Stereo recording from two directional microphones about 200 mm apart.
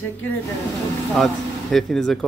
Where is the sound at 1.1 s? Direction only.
Centre (ahead or behind).